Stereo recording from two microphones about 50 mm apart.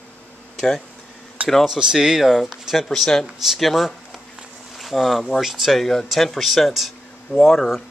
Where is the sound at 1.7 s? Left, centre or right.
Centre.